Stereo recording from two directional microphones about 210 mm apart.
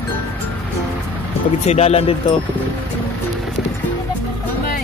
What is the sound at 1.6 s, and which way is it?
Speech, 30° left (ahead or behind).